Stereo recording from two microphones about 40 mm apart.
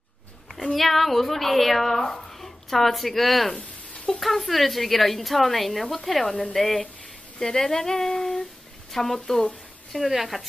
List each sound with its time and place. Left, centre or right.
0.6 s speech: centre
3.5 s a sound: left
4.2 s a woman's voice: centre
9.9 s a woman's voice: centre